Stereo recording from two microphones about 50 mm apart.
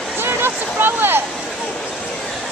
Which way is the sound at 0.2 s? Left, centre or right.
Right.